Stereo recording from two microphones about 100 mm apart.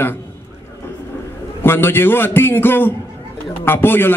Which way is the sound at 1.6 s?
20° left (ahead or behind).